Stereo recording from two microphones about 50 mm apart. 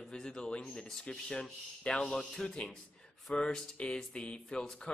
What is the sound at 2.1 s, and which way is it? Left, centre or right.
Speech, centre.